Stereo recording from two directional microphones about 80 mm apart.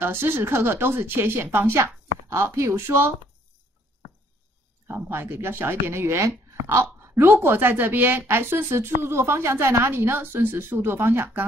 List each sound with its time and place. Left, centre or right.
0.0 s speech: right
4.8 s speech: right